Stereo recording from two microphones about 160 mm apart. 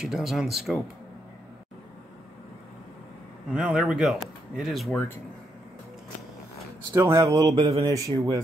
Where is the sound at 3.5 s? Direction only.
5° right (ahead or behind).